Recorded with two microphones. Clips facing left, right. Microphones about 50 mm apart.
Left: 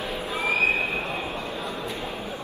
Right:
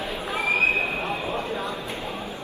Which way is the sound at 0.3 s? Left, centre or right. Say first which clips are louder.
Right 1 dB; right.